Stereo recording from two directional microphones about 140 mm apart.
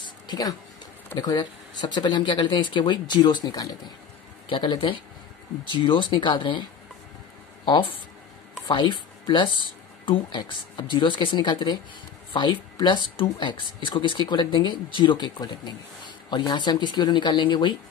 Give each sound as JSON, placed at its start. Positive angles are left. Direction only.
{"t": 0.0, "sound": "a sound", "side_deg": 30}
{"t": 1.1, "sound": "speech", "side_deg": 30}
{"t": 4.5, "sound": "speech", "side_deg": 35}